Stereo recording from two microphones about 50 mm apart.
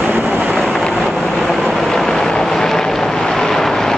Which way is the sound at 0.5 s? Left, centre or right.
Centre.